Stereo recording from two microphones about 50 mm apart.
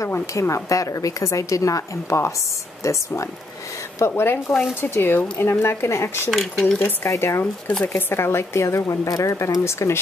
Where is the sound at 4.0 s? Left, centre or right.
Left.